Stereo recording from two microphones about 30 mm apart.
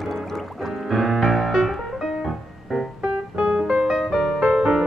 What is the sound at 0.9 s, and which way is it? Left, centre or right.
Music, centre.